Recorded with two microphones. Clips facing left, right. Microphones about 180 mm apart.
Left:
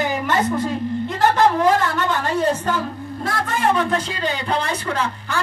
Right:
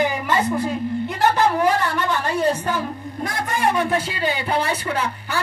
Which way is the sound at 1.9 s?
10° right (ahead or behind).